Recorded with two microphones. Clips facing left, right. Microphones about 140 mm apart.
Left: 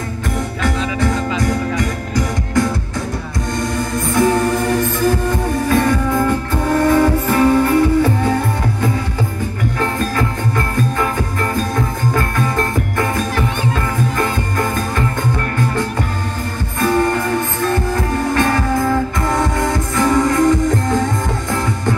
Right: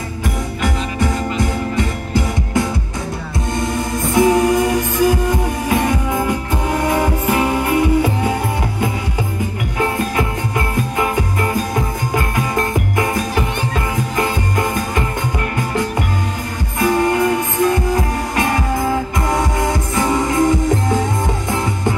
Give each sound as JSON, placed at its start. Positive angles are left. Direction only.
{"t": 0.6, "sound": "music", "side_deg": -20}
{"t": 3.7, "sound": "music", "side_deg": -20}
{"t": 5.7, "sound": "music", "side_deg": -20}
{"t": 9.8, "sound": "music", "side_deg": -15}
{"t": 16.8, "sound": "music", "side_deg": -20}
{"t": 18.3, "sound": "music", "side_deg": -20}